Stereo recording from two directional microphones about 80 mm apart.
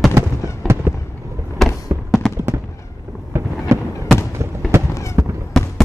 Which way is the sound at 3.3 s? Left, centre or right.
Right.